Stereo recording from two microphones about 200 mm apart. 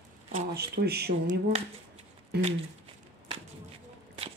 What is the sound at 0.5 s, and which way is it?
Speech, 55° right (ahead or behind).